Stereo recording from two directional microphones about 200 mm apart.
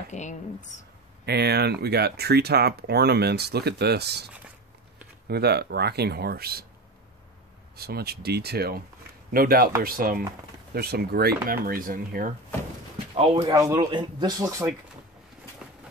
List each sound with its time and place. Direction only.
0.1 s speech: 35° left (ahead or behind)
1.2 s speech: 55° right (ahead or behind)
5.3 s speech: 55° right (ahead or behind)
7.7 s speech: 50° right (ahead or behind)
13.1 s speech: 30° right (ahead or behind)
15.6 s train: 5° right (ahead or behind)